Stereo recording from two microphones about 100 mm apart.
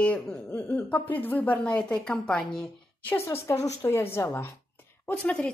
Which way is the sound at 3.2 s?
25° left (ahead or behind).